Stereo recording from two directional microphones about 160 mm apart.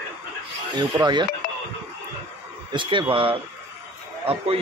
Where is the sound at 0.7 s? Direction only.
30° right (ahead or behind).